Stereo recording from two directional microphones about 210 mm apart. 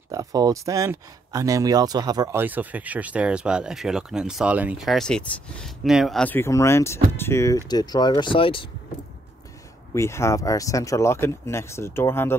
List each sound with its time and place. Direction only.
0.1 s speech: 15° right (ahead or behind); by 8.6 s 25° left (ahead or behind)
9.9 s speech: 15° left (ahead or behind)